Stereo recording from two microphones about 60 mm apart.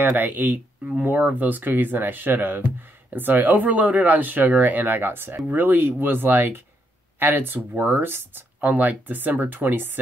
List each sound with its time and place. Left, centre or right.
0.0 s speech: right